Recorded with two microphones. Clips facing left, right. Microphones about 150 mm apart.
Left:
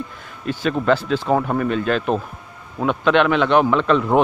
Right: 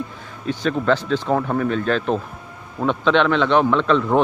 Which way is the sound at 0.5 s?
5° left (ahead or behind).